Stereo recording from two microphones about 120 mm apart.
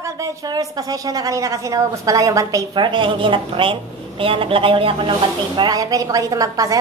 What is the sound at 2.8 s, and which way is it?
A woman's voice, 45° right (ahead or behind).